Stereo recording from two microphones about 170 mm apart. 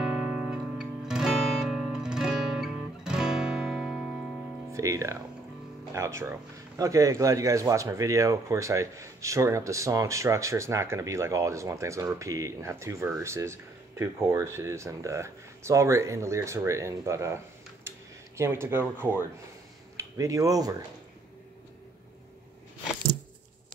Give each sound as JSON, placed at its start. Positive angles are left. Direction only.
{"t": 0.0, "sound": "music", "side_deg": -5}
{"t": 4.7, "sound": "speech", "side_deg": -20}
{"t": 18.4, "sound": "speech", "side_deg": -15}